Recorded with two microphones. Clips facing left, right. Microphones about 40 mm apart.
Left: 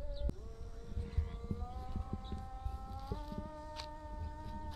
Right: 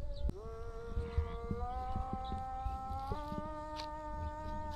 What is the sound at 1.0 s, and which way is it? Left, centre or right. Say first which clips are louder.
Howl: right 3 dB; centre.